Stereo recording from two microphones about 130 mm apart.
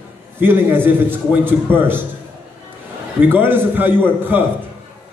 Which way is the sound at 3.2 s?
15° right (ahead or behind).